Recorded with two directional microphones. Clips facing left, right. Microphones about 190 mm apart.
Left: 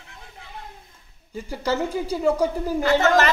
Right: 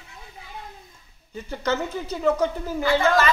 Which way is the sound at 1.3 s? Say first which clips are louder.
Left 1 dB; 10° left (ahead or behind).